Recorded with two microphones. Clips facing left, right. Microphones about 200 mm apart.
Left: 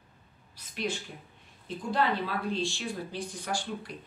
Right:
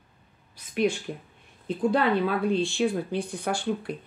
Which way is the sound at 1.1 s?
85° right.